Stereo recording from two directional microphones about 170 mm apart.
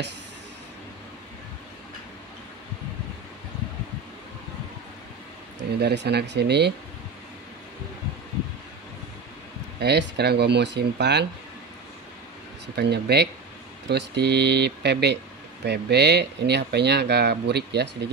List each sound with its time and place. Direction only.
5.6 s speech: 85° right
9.8 s speech: 80° right
12.7 s speech: 80° right